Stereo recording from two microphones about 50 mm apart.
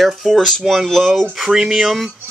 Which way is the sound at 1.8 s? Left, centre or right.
Centre.